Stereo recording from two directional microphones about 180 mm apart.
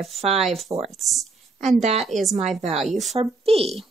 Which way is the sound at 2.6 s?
35° right (ahead or behind).